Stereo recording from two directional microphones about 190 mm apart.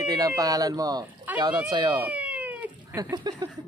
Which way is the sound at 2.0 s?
10° right (ahead or behind).